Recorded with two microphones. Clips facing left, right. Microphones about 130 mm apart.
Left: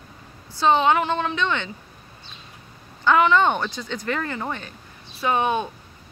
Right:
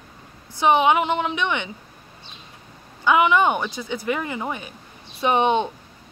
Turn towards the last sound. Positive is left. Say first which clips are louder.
# right 3 dB
turn(degrees=-20)  # may be behind; listen again after turning